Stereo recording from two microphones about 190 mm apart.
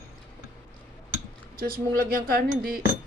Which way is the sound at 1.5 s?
50° right (ahead or behind).